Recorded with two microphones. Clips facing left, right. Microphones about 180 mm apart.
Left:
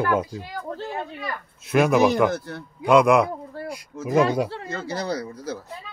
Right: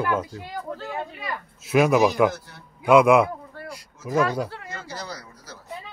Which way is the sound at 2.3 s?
60° left (ahead or behind).